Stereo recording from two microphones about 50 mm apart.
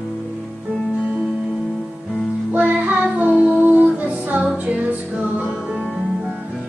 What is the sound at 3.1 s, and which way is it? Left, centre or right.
Music, right.